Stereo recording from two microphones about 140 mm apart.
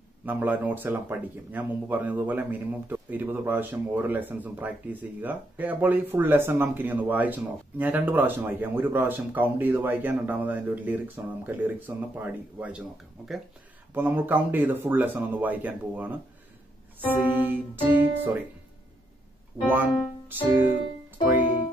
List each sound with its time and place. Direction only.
0.2 s speech: 15° right (ahead or behind)
13.9 s speech: 15° right (ahead or behind)
17.4 s speech: 15° right (ahead or behind)
19.7 s music: 15° right (ahead or behind)
21.4 s speech: 35° left (ahead or behind)